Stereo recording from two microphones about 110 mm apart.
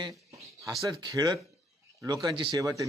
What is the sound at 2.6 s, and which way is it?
Speech, 30° right (ahead or behind).